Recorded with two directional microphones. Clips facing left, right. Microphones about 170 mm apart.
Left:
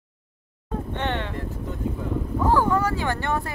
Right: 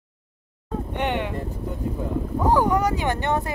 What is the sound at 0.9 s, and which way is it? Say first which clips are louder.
Vehicle: right 3 dB; 15° right (ahead or behind).